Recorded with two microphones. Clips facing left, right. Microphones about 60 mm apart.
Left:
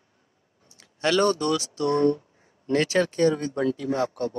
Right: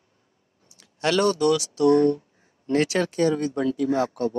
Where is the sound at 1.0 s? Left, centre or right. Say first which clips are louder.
Right 1 dB; centre.